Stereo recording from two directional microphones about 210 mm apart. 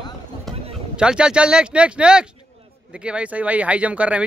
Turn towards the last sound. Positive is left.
turn(degrees=-5)  # may be behind; listen again after turning